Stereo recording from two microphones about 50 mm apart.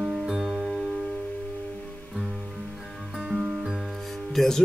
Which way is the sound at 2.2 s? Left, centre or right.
Centre.